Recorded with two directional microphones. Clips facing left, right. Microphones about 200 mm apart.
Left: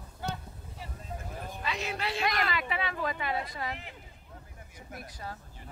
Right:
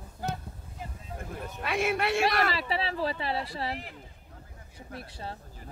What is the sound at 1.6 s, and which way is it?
Speech, 55° right (ahead or behind).